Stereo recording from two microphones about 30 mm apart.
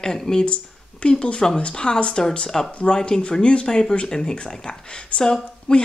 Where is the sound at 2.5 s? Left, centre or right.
Centre.